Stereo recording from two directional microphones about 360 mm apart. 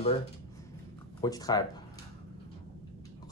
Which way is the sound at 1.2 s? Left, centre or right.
Centre.